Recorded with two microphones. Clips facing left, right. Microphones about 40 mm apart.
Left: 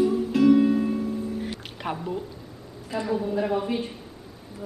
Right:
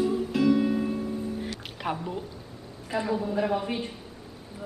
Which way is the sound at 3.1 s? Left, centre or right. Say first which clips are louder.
Left 2 dB; centre.